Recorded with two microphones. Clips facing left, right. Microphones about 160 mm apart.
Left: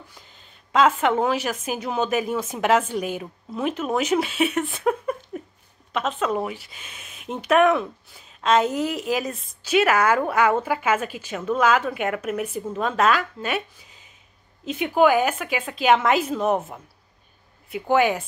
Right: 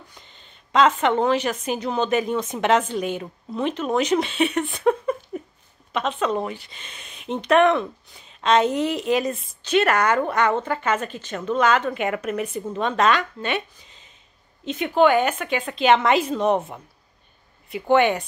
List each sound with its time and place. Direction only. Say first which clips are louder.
0.1 s speech: even; 5° left (ahead or behind)